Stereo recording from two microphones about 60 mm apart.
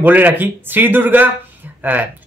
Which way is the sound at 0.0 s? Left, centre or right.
Right.